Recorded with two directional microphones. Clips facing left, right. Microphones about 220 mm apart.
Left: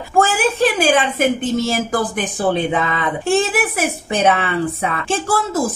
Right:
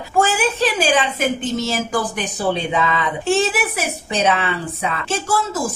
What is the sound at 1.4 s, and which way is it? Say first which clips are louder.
Speech: left 3 dB; 50° left (ahead or behind).